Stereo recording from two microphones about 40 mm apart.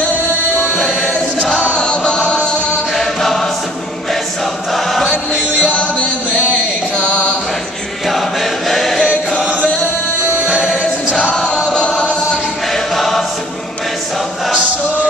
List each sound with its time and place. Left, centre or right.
1.4 s choir: right
1.7 s chant: left
2.9 s choir: centre
5.7 s music: left
8.1 s choir: centre
10.5 s music: centre
12.7 s choir: centre